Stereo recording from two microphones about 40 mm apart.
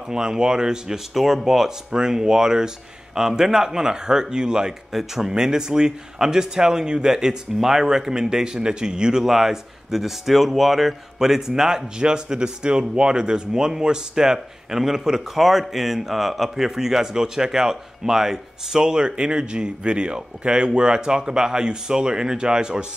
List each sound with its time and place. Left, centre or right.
0.1 s speech: centre
1.1 s speech: centre
9.2 s speech: centre